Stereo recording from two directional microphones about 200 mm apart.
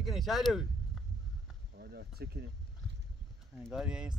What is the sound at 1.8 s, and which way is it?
Speech, 55° right (ahead or behind).